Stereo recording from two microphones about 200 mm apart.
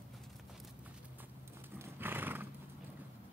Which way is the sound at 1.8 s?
10° right (ahead or behind).